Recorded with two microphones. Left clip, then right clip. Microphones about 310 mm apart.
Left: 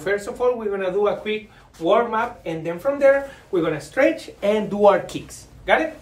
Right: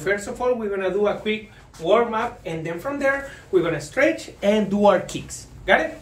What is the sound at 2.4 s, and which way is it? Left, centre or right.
Speech, centre.